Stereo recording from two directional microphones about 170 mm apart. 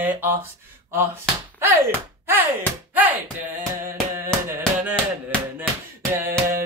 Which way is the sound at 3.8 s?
15° right (ahead or behind).